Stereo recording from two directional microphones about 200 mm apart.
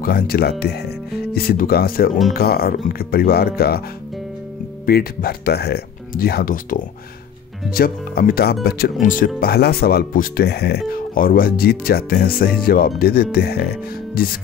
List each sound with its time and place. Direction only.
0.0 s speech: 50° left (ahead or behind)
4.8 s speech: 50° left (ahead or behind)